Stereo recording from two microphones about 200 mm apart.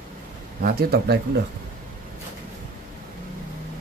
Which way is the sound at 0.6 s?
50° right (ahead or behind).